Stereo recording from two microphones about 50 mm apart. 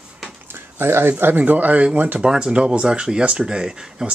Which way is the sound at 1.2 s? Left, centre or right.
Right.